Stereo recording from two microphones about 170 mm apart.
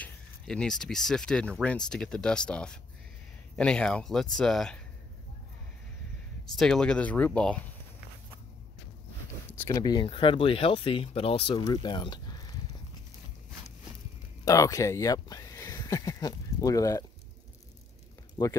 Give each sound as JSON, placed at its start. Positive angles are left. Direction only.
{"t": 0.0, "sound": "speech", "side_deg": 5}
{"t": 6.5, "sound": "speech", "side_deg": 0}
{"t": 9.5, "sound": "speech", "side_deg": 15}
{"t": 14.4, "sound": "speech", "side_deg": 20}
{"t": 18.4, "sound": "speech", "side_deg": 20}